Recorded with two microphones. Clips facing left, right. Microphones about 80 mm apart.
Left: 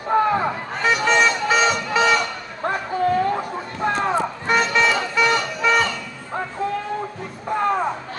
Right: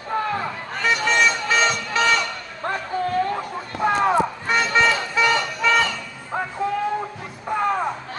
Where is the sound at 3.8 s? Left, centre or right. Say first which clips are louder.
Right 2 dB; centre.